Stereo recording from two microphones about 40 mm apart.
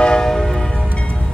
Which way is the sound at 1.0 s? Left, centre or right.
Left.